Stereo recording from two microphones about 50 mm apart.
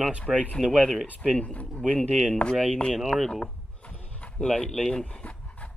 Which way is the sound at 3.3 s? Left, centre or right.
Centre.